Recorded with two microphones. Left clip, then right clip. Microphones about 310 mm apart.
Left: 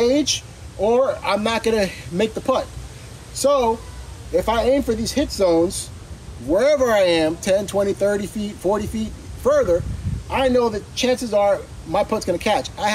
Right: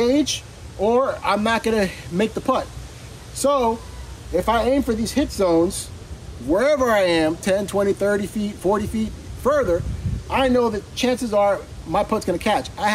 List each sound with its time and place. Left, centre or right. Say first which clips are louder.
0.0 s speech: left 1 dB; centre